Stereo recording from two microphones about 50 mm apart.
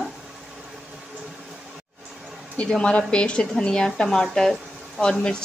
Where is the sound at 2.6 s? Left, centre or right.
Left.